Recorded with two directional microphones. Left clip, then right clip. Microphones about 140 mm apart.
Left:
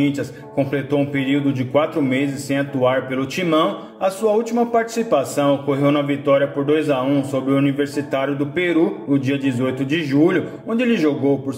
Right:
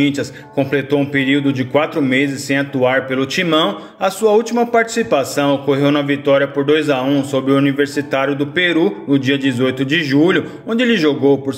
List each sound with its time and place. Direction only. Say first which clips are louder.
0.0 s a man's voice: right 4 dB; 20° right (ahead or behind)